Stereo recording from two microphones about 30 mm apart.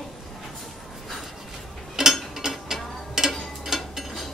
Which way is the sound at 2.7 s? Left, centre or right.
Centre.